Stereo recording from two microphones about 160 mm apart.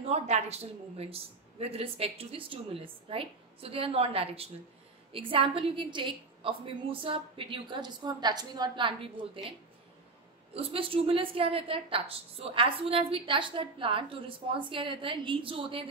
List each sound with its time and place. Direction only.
0.0 s a woman's voice: 40° right (ahead or behind)
10.5 s a woman's voice: 35° right (ahead or behind)